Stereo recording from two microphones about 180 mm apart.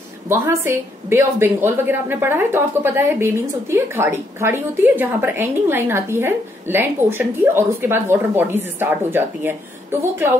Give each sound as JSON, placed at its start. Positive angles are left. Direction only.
{"t": 0.3, "sound": "a woman's voice", "side_deg": -15}